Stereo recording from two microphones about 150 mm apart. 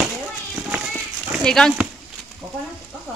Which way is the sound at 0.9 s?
5° left (ahead or behind).